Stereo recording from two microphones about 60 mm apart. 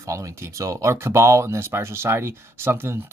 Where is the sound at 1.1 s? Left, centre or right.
Right.